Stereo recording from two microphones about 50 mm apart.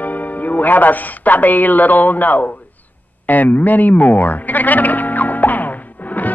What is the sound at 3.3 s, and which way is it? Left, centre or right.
Bleat, left.